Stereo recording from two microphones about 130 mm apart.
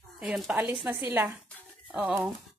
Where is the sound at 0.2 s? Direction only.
5° right (ahead or behind).